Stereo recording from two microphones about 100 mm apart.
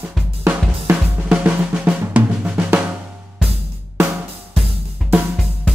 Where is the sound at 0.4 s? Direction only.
20° right (ahead or behind).